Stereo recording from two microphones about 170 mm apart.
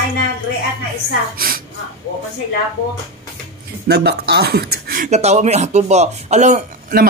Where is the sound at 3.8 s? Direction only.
75° right (ahead or behind).